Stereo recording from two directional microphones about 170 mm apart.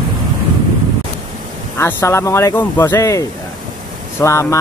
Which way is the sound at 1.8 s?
15° left (ahead or behind).